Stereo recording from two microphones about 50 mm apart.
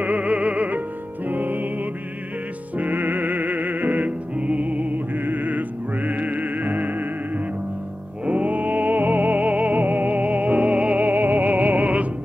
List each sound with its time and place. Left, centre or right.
0.0 s music: right